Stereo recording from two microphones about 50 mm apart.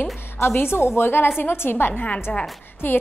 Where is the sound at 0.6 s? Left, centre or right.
Left.